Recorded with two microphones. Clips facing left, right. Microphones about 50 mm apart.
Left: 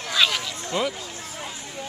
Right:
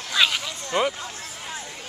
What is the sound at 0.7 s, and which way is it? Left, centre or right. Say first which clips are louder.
Speech: right 3 dB; right.